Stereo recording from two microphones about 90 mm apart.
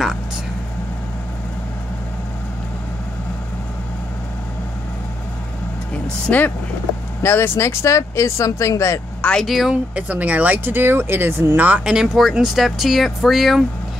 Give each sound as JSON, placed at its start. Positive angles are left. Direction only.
{"t": 6.2, "sound": "speech", "side_deg": 20}
{"t": 7.2, "sound": "speech", "side_deg": 30}
{"t": 9.2, "sound": "speech", "side_deg": 5}
{"t": 9.9, "sound": "speech", "side_deg": -15}